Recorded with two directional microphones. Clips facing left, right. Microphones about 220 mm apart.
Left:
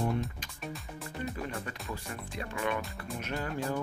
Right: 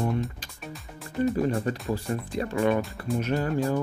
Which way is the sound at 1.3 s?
35° right (ahead or behind).